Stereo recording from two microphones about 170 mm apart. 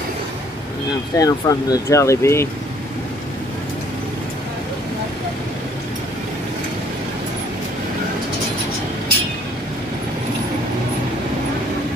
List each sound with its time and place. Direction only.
1.1 s speech: 20° left (ahead or behind)